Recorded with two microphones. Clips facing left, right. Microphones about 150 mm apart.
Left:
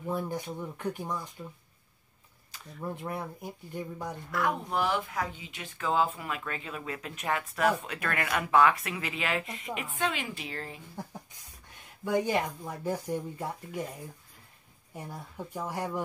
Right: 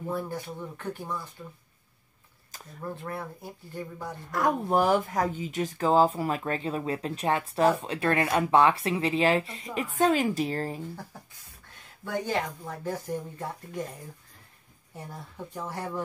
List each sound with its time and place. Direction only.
0.1 s speech: 15° left (ahead or behind)
2.8 s speech: 15° left (ahead or behind)
4.3 s speech: 40° right (ahead or behind)
11.1 s speech: 15° left (ahead or behind)
15.0 s speech: 10° left (ahead or behind)